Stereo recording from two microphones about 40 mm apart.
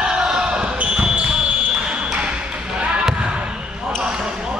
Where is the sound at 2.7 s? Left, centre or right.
Right.